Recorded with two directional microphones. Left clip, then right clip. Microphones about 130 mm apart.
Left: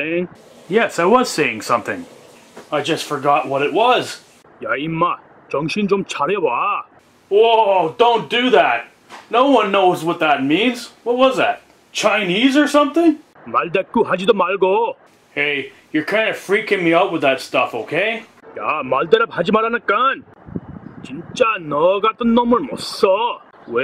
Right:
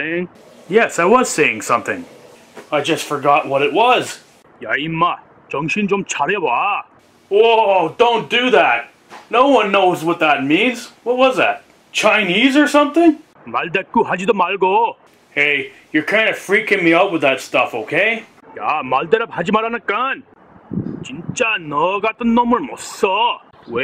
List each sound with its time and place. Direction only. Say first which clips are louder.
0.0 s speech: even; 5° left (ahead or behind)
12.0 s speech: right 2 dB; 10° right (ahead or behind)
21.4 s speech: left 1 dB; 5° right (ahead or behind)